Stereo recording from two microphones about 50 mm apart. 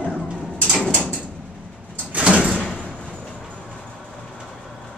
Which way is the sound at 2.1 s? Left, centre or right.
Right.